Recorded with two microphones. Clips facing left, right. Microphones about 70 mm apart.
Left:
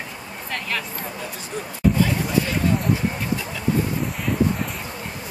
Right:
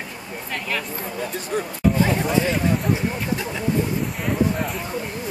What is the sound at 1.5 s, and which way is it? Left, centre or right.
Speech, right.